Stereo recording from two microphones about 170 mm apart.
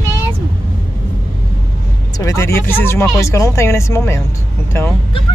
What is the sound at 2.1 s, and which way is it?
Speech, 15° left (ahead or behind).